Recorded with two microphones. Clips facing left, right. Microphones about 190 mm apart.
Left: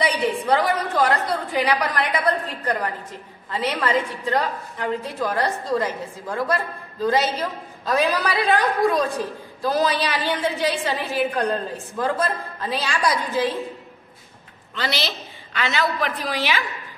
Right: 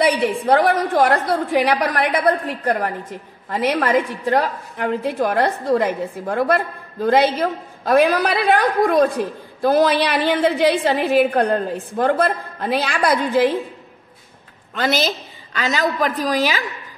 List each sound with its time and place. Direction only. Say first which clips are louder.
0.5 s a woman's voice: right 7 dB; 55° right (ahead or behind)
14.8 s a woman's voice: right 7 dB; 45° right (ahead or behind)